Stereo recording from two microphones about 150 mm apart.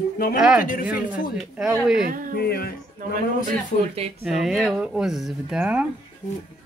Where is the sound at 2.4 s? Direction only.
90° left.